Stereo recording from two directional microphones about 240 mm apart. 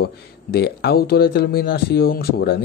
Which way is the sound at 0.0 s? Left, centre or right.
Left.